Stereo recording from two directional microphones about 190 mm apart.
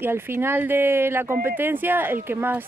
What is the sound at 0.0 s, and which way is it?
Speech, 10° right (ahead or behind).